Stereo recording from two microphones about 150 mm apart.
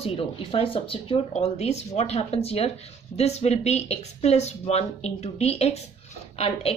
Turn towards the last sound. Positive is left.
turn(degrees=40)  # may be behind; listen again after turning